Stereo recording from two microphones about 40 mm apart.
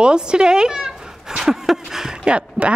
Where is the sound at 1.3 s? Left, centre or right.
Centre.